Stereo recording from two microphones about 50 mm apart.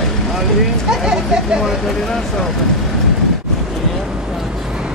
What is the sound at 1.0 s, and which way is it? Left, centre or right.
Speech, centre.